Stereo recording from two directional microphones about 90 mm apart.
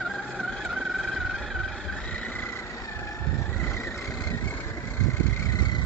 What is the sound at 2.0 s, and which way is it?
Vehicle, 15° left (ahead or behind).